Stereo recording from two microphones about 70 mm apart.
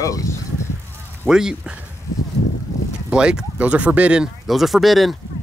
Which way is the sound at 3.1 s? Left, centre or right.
Centre.